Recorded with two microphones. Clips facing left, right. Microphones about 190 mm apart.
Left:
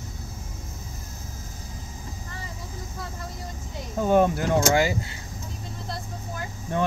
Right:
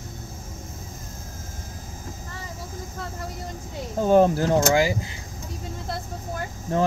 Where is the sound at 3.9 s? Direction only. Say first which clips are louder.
Right 3 dB; 30° right (ahead or behind).